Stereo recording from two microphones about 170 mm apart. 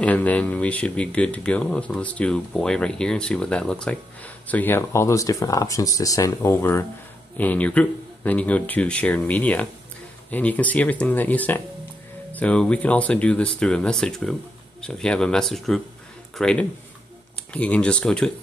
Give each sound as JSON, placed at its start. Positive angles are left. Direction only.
{"t": 0.0, "sound": "speech", "side_deg": 10}